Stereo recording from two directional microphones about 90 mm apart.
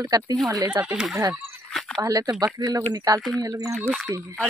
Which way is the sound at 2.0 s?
40° right (ahead or behind).